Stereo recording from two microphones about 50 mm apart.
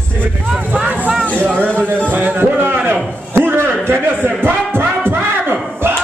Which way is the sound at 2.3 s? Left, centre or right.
Right.